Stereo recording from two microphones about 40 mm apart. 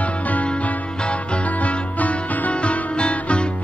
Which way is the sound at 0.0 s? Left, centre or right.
Left.